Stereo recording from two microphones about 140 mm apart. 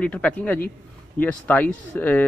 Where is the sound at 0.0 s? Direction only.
10° left (ahead or behind).